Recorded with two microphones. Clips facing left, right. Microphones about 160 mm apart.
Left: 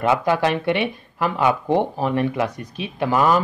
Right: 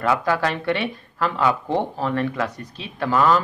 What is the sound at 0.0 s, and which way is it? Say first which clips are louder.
Speech: left 2 dB; 20° left (ahead or behind).